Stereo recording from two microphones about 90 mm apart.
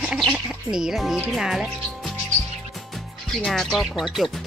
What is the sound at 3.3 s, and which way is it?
Speech, 5° left (ahead or behind).